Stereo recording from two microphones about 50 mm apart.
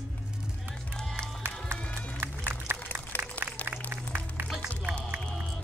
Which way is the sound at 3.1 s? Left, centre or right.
Left.